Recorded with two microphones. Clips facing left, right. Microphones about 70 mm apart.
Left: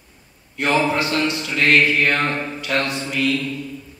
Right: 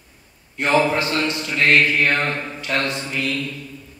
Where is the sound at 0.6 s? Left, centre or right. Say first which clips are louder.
Right 1 dB; right.